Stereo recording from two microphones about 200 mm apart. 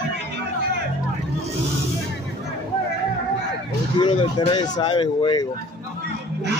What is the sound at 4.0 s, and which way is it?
Speech, 25° left (ahead or behind).